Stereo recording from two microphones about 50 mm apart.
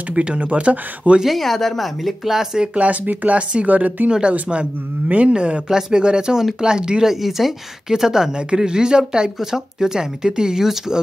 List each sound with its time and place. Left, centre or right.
0.1 s speech: right
1.2 s speech: centre
2.7 s speech: right
4.1 s a woman's voice: right